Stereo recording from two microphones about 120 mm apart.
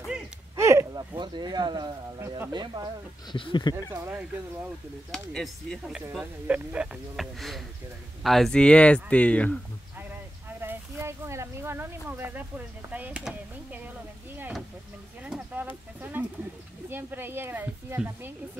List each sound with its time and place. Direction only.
0.6 s a sound: 25° right (ahead or behind)
1.1 s speech: 40° right (ahead or behind)
2.1 s speech: 25° right (ahead or behind)
2.5 s speech: 35° right (ahead or behind)
3.3 s speech: 45° left (ahead or behind)
3.9 s speech: 20° right (ahead or behind)
5.1 s speech: 5° left (ahead or behind)
10.6 s speech: 20° right (ahead or behind)
13.2 s a sound: 10° right (ahead or behind)
15.2 s a sound: 10° right (ahead or behind)
16.9 s speech: 20° right (ahead or behind)